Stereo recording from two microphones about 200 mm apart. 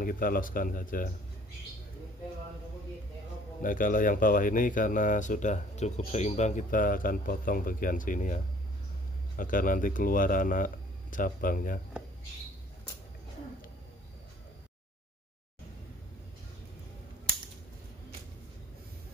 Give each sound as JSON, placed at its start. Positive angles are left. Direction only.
{"t": 0.0, "sound": "speech", "side_deg": 45}
{"t": 3.6, "sound": "speech", "side_deg": 45}
{"t": 9.4, "sound": "speech", "side_deg": 40}